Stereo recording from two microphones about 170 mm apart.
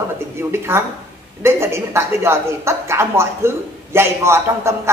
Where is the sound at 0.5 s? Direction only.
15° right (ahead or behind).